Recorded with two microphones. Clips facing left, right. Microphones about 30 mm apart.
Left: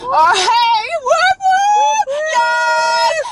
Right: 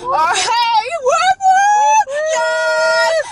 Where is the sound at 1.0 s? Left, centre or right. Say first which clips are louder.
Even; left.